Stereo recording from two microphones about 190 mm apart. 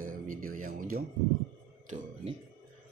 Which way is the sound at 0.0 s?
45° right (ahead or behind).